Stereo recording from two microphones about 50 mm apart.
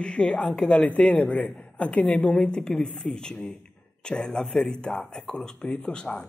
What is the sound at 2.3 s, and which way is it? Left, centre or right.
A woman's voice, centre.